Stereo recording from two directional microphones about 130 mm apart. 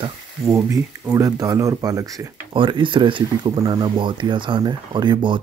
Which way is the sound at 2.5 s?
40° right (ahead or behind).